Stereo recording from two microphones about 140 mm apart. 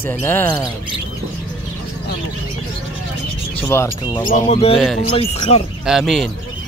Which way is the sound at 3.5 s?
15° left (ahead or behind).